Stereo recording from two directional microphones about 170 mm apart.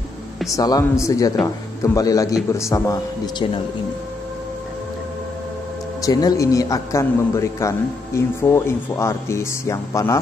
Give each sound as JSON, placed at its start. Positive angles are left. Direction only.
{"t": 0.6, "sound": "a man's voice", "side_deg": 20}
{"t": 6.0, "sound": "a man's voice", "side_deg": 20}